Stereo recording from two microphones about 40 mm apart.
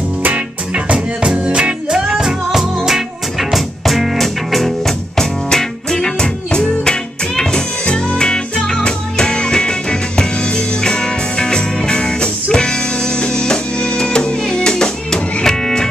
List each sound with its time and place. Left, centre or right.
0.2 s music: right
0.9 s music: right; by 15.9 s centre